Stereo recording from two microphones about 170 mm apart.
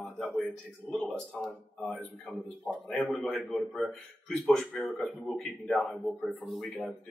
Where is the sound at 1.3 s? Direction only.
5° left (ahead or behind).